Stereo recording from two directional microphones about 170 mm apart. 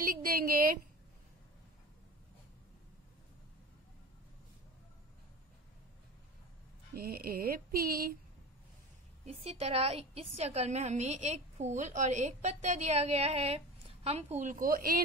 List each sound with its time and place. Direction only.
0.0 s a woman's voice: 55° right (ahead or behind)
6.9 s speech: 65° right (ahead or behind)
9.2 s a woman's voice: 40° right (ahead or behind); by 15.0 s 60° right (ahead or behind)